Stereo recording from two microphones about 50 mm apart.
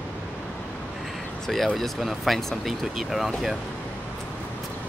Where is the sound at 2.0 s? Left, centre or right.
Centre.